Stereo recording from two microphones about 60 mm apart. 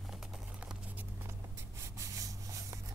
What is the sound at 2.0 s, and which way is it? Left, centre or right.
Rub, right.